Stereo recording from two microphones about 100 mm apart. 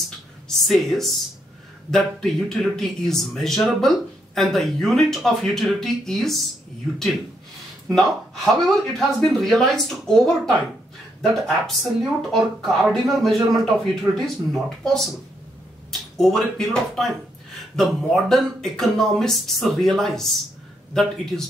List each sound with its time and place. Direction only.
0.7 s speech: 5° left (ahead or behind)
7.9 s speech: centre (ahead or behind)